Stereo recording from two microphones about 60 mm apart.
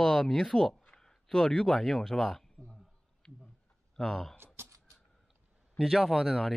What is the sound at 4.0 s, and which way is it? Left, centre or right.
Speech, centre.